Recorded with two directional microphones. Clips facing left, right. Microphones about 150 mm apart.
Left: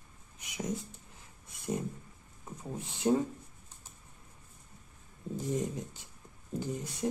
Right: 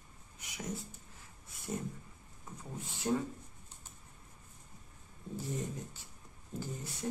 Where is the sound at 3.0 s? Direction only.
25° left (ahead or behind).